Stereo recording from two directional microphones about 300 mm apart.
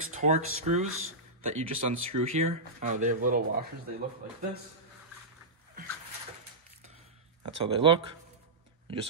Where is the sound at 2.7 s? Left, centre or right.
Right.